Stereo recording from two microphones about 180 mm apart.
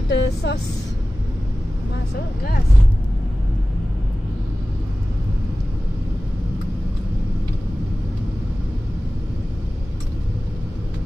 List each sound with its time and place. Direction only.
0.1 s speech: 70° left (ahead or behind)